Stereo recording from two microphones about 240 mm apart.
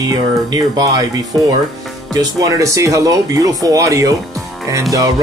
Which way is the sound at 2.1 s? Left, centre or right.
Centre.